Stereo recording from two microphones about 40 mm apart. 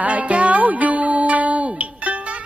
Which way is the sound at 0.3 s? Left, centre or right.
Right.